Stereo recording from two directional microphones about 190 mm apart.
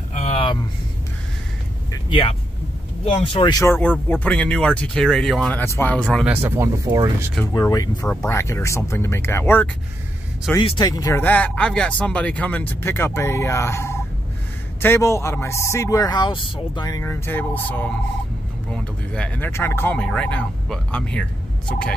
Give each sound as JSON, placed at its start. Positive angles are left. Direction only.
{"t": 0.1, "sound": "a sound", "side_deg": 35}
{"t": 1.9, "sound": "vehicle", "side_deg": 25}
{"t": 3.1, "sound": "speech", "side_deg": 30}
{"t": 6.2, "sound": "speech", "side_deg": -10}
{"t": 7.5, "sound": "speech", "side_deg": 20}